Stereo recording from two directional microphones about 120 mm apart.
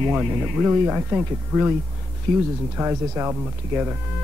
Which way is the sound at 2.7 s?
20° right (ahead or behind).